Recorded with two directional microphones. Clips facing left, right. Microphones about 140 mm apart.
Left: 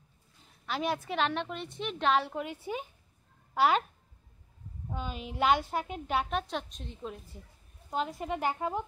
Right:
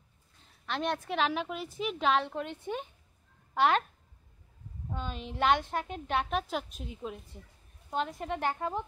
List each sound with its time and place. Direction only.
0.7 s a woman's voice: 5° left (ahead or behind)
4.8 s a woman's voice: 5° left (ahead or behind)